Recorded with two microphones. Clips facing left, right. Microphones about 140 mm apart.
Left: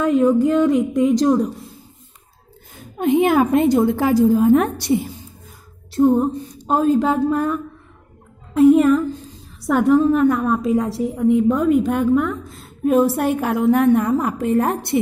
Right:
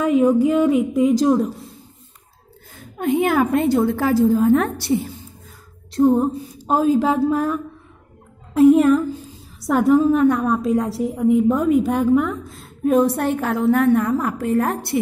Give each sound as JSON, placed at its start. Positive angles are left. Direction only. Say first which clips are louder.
{"t": 0.0, "sound": "a woman's voice", "louder": "even", "side_deg": -5}
{"t": 2.7, "sound": "a woman's voice", "louder": "left 3 dB", "side_deg": 20}
{"t": 5.9, "sound": "a woman's voice", "louder": "even", "side_deg": 0}